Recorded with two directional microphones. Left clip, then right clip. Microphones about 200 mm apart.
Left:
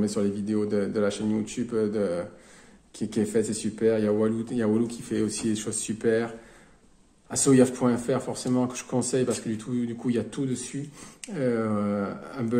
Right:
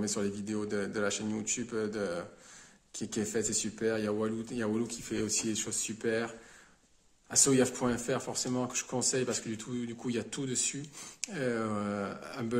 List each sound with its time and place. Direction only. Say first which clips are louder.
0.0 s speech: left 7 dB; 15° right (ahead or behind)